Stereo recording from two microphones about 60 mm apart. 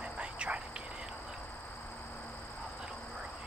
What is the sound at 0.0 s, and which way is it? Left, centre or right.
Whispering, centre.